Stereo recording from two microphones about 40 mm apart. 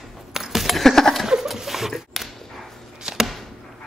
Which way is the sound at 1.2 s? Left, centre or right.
Centre.